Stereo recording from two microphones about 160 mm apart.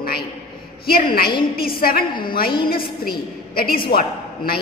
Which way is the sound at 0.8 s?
70° left (ahead or behind).